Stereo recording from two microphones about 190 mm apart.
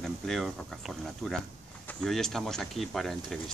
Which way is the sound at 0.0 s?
Centre (ahead or behind).